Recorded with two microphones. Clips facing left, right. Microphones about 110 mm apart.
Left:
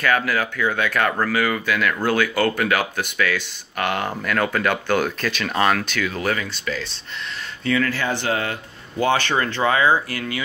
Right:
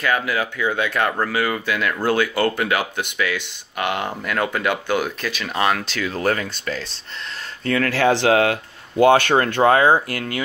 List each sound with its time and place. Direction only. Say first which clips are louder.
0.0 s speech: left 1 dB; 20° right (ahead or behind); by 6.9 s 45° right (ahead or behind)
7.6 s speech: right 4 dB; 60° right (ahead or behind); by 8.5 s 90° right
9.0 s speech: right 6 dB; 55° right (ahead or behind)